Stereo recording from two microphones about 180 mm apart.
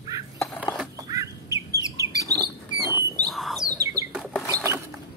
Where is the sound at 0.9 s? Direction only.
20° right (ahead or behind).